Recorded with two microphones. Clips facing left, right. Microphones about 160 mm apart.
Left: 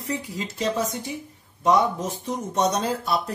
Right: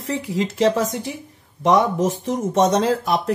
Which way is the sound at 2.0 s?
90° right.